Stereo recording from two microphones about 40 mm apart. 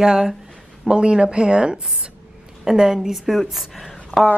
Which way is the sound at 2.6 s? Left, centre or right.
Centre.